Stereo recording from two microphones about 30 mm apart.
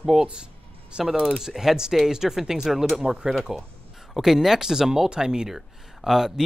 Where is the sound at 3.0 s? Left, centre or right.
Right.